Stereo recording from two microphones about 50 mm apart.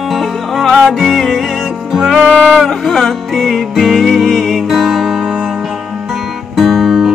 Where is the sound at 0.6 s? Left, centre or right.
Centre.